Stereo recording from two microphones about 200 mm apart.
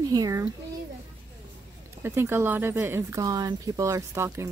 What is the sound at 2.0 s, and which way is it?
Speech, 10° right (ahead or behind).